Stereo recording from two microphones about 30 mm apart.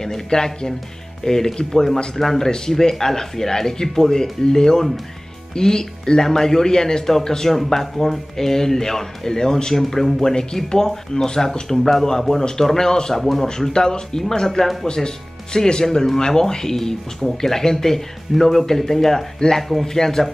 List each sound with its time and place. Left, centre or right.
0.0 s speech: centre
10.2 s speech: left
11.7 s speech: centre
13.2 s speech: centre
13.5 s speech: left